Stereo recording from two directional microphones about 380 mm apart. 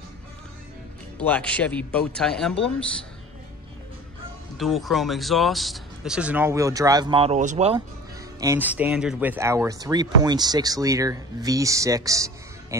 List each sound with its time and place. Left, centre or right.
1.1 s speech: centre
4.6 s speech: centre
8.4 s speech: centre